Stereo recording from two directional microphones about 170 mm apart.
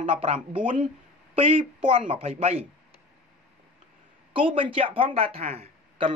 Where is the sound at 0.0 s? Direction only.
35° right (ahead or behind).